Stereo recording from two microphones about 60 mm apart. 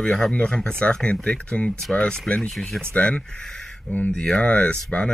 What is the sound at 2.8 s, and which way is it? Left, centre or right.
Speech, centre.